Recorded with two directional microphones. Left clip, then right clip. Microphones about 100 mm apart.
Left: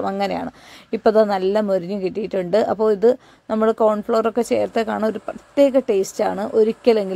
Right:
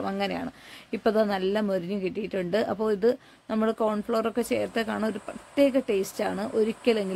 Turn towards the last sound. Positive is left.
turn(degrees=35)  # may be behind; listen again after turning